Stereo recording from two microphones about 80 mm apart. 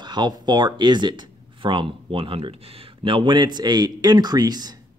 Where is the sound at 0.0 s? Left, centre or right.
Right.